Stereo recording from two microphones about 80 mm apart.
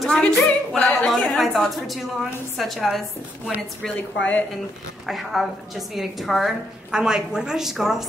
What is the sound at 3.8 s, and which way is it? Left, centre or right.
Speech, centre.